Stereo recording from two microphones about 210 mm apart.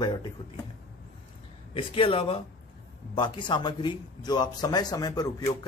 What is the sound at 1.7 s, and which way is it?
A man's voice, 25° left (ahead or behind).